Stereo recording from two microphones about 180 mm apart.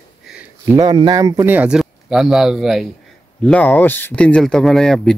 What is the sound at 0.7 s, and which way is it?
Speech, 20° right (ahead or behind).